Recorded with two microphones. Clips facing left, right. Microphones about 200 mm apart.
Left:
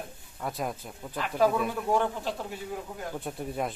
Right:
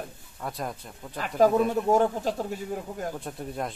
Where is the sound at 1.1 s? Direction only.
45° right (ahead or behind).